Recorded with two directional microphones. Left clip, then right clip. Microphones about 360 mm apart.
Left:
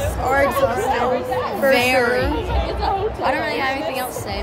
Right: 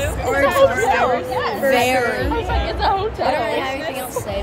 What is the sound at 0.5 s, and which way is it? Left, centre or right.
Speech, right.